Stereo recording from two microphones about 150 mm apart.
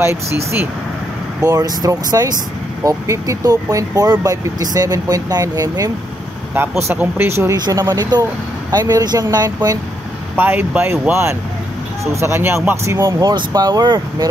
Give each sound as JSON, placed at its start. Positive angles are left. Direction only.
{"t": 0.0, "sound": "speech", "side_deg": -15}
{"t": 1.4, "sound": "speech", "side_deg": -20}
{"t": 10.3, "sound": "speech", "side_deg": -15}